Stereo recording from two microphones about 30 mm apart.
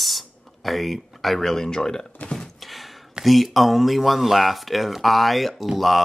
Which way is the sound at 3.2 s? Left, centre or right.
Centre.